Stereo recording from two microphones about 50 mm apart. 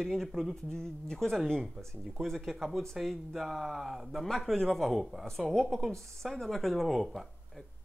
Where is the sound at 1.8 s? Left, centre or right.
Right.